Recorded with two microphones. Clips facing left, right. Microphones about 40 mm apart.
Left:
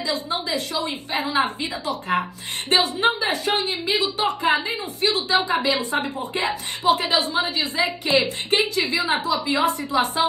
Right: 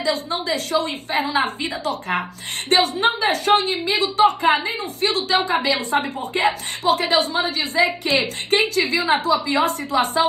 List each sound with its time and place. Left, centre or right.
0.0 s a woman's voice: right